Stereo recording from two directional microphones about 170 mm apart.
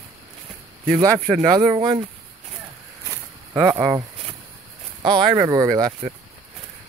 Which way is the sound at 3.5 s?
15° right (ahead or behind).